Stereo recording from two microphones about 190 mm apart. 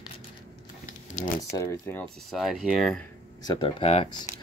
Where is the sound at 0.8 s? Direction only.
40° left (ahead or behind).